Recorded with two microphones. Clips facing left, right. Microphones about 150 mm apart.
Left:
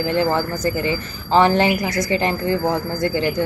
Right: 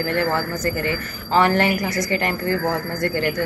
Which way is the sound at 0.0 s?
20° left (ahead or behind).